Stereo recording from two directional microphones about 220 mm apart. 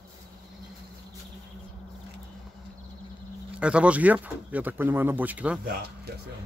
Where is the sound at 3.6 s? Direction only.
5° right (ahead or behind).